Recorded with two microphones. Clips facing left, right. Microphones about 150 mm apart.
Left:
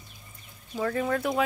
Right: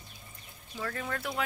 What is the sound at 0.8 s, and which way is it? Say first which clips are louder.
Speech: left 9 dB; 15° left (ahead or behind).